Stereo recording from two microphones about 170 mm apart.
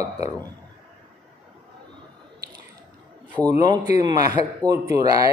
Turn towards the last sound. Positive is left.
turn(degrees=-20)  # may be behind; listen again after turning